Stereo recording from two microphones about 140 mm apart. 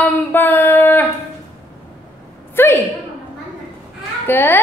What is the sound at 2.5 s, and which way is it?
Speech, 15° left (ahead or behind).